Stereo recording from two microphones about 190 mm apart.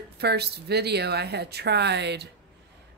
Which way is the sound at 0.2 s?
60° right (ahead or behind).